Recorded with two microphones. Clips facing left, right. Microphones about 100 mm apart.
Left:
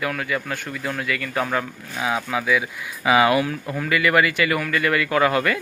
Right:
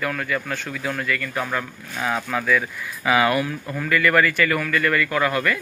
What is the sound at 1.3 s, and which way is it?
Speech, 15° left (ahead or behind).